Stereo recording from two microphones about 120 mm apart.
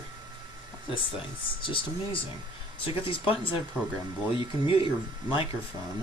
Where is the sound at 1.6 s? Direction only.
45° left (ahead or behind).